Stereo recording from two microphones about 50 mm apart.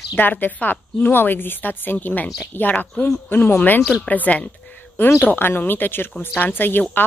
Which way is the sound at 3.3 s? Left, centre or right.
Left.